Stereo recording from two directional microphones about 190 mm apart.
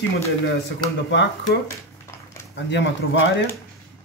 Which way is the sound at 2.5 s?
65° left (ahead or behind).